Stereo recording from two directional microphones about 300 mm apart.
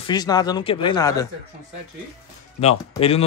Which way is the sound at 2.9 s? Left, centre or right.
Centre.